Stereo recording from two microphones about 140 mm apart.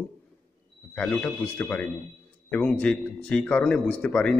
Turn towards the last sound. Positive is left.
turn(degrees=5)  # may be behind; listen again after turning